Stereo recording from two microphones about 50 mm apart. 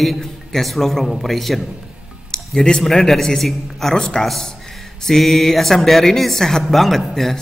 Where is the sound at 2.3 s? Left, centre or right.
Centre.